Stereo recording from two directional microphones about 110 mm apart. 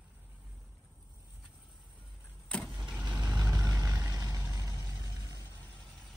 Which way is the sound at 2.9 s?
10° right (ahead or behind).